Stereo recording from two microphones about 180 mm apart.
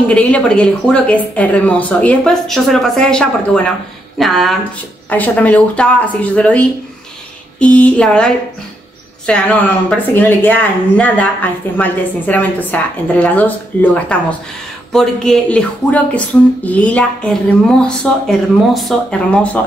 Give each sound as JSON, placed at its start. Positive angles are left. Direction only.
{"t": 0.1, "sound": "speech", "side_deg": 5}